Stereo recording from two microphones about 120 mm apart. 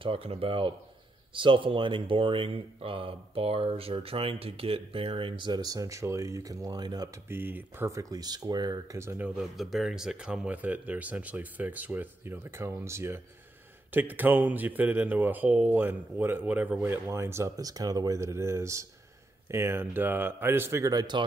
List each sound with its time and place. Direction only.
0.0 s speech: 50° right (ahead or behind); by 7.1 s 35° right (ahead or behind)
7.2 s speech: 15° right (ahead or behind); by 9.0 s 35° right (ahead or behind)
9.1 s speech: 5° right (ahead or behind); by 21.2 s 35° right (ahead or behind)